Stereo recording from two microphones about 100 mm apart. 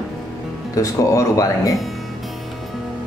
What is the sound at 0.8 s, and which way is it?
Speech, 35° left (ahead or behind).